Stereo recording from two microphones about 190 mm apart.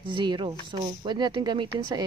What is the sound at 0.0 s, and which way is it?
A woman's voice, 25° right (ahead or behind).